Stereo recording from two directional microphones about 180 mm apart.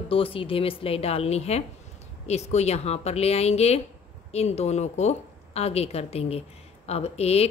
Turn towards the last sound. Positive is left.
turn(degrees=35)  # may be behind; listen again after turning